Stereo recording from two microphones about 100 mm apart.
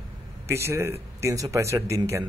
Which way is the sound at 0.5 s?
25° right (ahead or behind).